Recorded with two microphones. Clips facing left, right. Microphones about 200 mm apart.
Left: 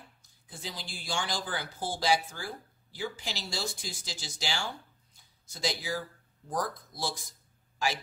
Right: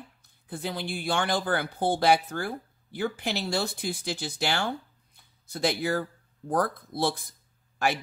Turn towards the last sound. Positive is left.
turn(degrees=-60)  # may be behind; listen again after turning